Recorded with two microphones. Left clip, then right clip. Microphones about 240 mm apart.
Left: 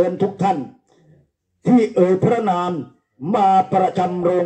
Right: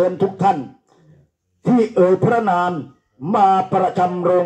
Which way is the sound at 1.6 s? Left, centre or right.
Left.